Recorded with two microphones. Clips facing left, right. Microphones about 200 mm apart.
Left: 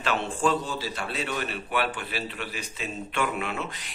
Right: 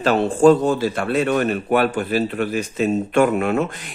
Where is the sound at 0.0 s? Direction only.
40° right (ahead or behind).